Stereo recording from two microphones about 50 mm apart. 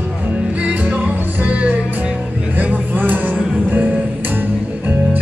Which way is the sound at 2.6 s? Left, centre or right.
Right.